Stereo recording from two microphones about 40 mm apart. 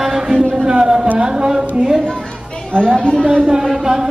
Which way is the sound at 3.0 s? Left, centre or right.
Centre.